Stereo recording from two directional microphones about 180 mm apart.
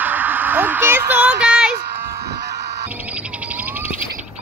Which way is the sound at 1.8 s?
35° right (ahead or behind).